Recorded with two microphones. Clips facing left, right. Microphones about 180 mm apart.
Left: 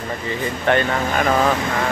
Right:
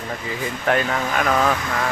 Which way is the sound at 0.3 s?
5° right (ahead or behind).